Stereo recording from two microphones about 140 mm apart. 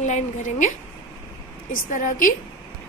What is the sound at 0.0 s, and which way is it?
Speech, 60° left (ahead or behind).